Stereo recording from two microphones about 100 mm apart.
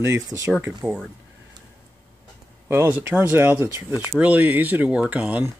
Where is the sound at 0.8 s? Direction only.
20° right (ahead or behind).